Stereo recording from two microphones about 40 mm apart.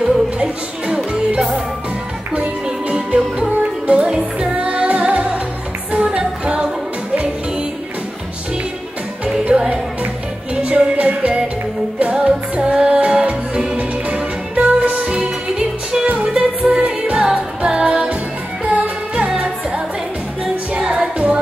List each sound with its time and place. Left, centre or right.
0.0 s music: right
2.3 s music: right
4.6 s music: right
9.5 s music: right
20.8 s music: centre